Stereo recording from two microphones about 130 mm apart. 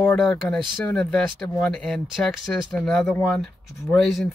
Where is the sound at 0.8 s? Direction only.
5° left (ahead or behind).